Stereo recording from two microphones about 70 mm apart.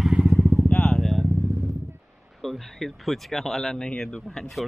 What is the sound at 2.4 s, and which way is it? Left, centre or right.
Speech, centre.